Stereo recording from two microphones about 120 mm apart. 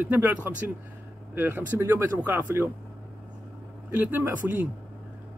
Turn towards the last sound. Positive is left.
turn(degrees=-15)  # may be behind; listen again after turning